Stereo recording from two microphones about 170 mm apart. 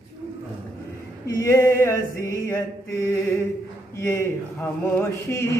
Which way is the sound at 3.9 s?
15° left (ahead or behind).